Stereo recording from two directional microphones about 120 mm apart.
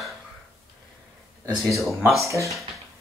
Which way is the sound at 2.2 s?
25° right (ahead or behind).